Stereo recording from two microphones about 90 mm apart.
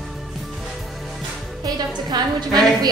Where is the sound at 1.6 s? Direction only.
50° right (ahead or behind).